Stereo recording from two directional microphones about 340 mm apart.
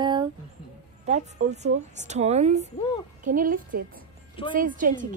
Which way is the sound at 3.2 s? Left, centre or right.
Right.